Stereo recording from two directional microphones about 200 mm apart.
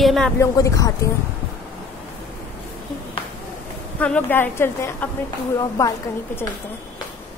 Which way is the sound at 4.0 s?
10° left (ahead or behind).